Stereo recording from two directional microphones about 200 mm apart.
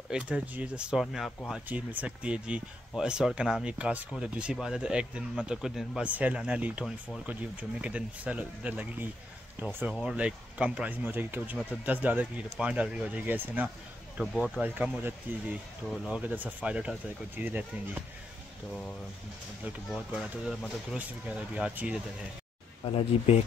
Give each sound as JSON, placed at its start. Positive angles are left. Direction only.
{"t": 0.1, "sound": "speech", "side_deg": -5}
{"t": 14.6, "sound": "speech", "side_deg": -10}
{"t": 19.9, "sound": "speech", "side_deg": 0}
{"t": 22.8, "sound": "speech", "side_deg": 30}